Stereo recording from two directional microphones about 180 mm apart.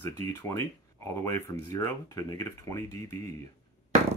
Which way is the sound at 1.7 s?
20° left (ahead or behind).